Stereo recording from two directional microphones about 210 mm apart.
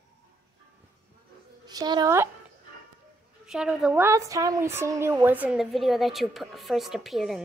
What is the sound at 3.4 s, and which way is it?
A woman's voice, 5° right (ahead or behind).